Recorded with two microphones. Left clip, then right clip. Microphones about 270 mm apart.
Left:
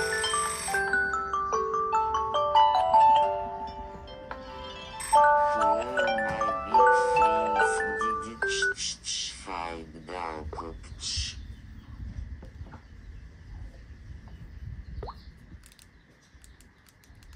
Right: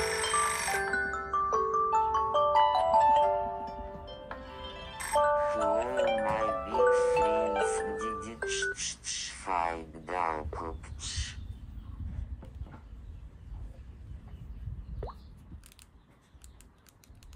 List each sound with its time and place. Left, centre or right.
0.0 s bicycle bell: centre
1.2 s marimba: centre
5.6 s music: centre
5.9 s glockenspiel: centre
8.5 s telephone dialing: centre